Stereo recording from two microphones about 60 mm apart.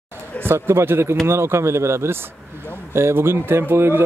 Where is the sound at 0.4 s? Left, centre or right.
Right.